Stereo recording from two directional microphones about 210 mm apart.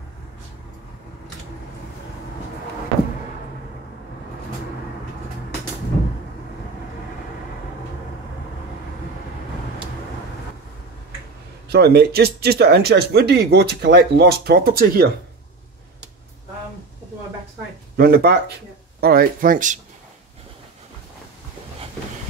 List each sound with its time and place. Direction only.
11.7 s speech: 50° right (ahead or behind)
17.9 s speech: 45° right (ahead or behind)